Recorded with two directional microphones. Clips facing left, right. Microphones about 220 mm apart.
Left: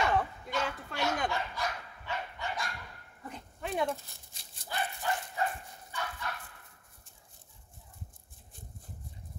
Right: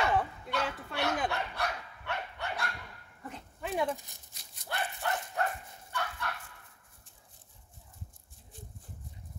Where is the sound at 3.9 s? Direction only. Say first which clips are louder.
Right 1 dB; 15° right (ahead or behind).